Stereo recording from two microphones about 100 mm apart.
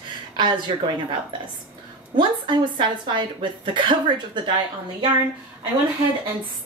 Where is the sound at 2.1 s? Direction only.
50° right (ahead or behind).